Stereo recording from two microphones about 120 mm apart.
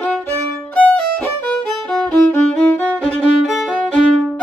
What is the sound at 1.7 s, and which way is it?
Music, 5° left (ahead or behind).